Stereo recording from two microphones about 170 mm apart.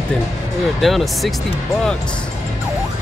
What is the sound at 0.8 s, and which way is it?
Speech, centre (ahead or behind).